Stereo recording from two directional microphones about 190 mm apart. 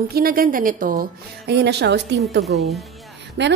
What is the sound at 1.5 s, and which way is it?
Speech, 60° right (ahead or behind).